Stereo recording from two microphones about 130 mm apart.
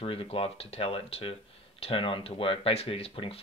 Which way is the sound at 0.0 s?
45° left (ahead or behind).